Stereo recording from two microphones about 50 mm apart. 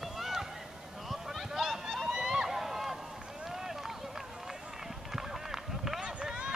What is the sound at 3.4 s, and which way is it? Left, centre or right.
Run, centre.